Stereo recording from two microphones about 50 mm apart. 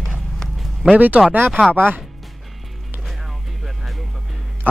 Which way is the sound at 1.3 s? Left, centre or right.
Right.